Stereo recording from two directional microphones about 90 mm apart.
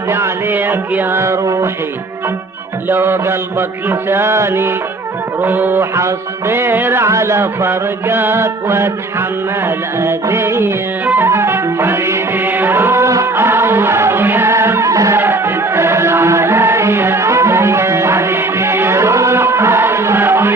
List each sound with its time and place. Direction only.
0.1 s music: 25° right (ahead or behind)
2.9 s music: 25° right (ahead or behind)
9.9 s music: 30° right (ahead or behind)
15.1 s music: 25° right (ahead or behind)